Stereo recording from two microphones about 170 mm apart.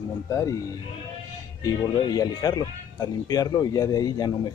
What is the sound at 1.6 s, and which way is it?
Speech, 20° left (ahead or behind).